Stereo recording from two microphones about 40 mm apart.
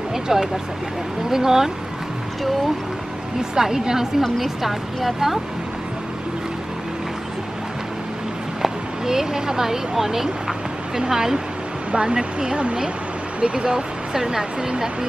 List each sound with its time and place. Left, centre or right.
0.1 s speech: centre
3.5 s speech: centre
4.2 s a woman's voice: centre
8.6 s speech: centre